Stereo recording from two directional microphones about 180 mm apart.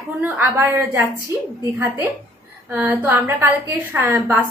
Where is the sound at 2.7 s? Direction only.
10° right (ahead or behind).